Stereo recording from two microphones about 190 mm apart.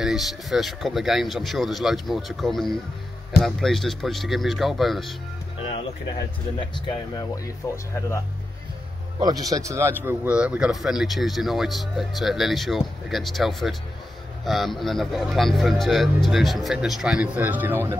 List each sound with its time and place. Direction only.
0.0 s speech: centre (ahead or behind)
7.7 s speech: 15° left (ahead or behind)
9.2 s speech: 20° right (ahead or behind)